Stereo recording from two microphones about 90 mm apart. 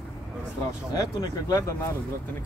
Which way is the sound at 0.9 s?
45° left (ahead or behind).